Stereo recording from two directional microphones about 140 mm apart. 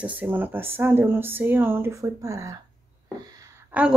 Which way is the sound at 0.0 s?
10° right (ahead or behind).